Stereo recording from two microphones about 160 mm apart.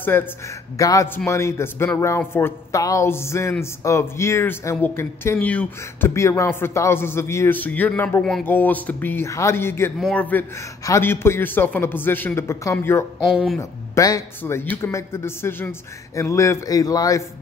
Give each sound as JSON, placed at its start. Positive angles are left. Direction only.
{"t": 0.0, "sound": "a man's voice", "side_deg": 15}
{"t": 13.2, "sound": "speech", "side_deg": 0}
{"t": 13.6, "sound": "a man's voice", "side_deg": 20}